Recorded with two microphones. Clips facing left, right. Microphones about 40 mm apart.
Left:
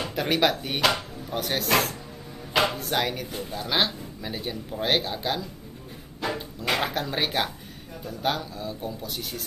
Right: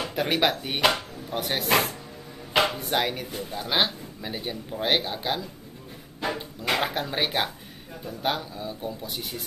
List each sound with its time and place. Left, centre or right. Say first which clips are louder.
0.0 s speech: even; centre